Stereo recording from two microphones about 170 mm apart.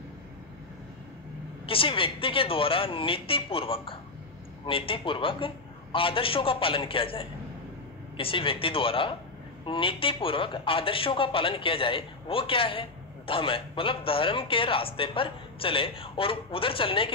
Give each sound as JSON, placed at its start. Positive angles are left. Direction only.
{"t": 1.7, "sound": "a man's voice", "side_deg": 30}